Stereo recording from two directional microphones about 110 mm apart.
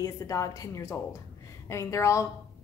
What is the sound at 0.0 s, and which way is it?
A woman's voice, 30° left (ahead or behind).